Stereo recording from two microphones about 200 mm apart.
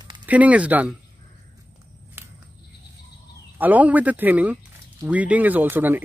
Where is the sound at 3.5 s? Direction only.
10° right (ahead or behind).